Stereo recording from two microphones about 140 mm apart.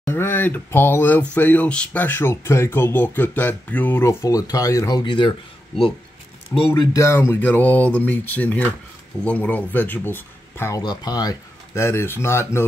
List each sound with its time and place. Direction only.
0.0 s speech: 15° left (ahead or behind); by 5.3 s 35° left (ahead or behind)
6.7 s speech: 25° left (ahead or behind)
10.8 s speech: 30° left (ahead or behind)